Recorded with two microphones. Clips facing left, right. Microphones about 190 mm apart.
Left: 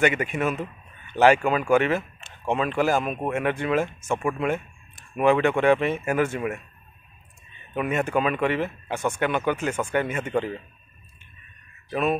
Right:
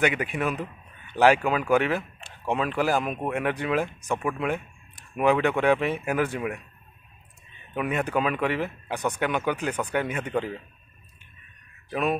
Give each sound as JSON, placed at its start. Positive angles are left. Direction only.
{"t": 0.0, "sound": "speech", "side_deg": 0}
{"t": 7.7, "sound": "speech", "side_deg": 0}
{"t": 11.9, "sound": "speech", "side_deg": -5}